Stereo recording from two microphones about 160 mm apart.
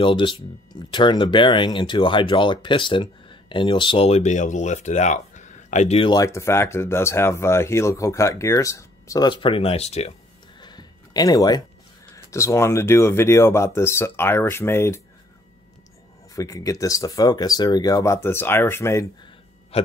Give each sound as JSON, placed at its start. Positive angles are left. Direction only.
{"t": 0.0, "sound": "speech", "side_deg": 30}
{"t": 6.0, "sound": "speech", "side_deg": 20}
{"t": 9.3, "sound": "speech", "side_deg": 35}
{"t": 10.6, "sound": "a sound", "side_deg": 25}
{"t": 12.3, "sound": "speech", "side_deg": 20}
{"t": 16.3, "sound": "speech", "side_deg": 20}
{"t": 19.7, "sound": "hiccup", "side_deg": 40}